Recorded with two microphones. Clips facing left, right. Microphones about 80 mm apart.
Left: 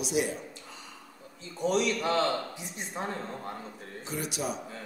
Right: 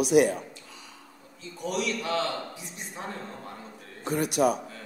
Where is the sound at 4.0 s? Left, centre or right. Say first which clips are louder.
Right 10 dB; right.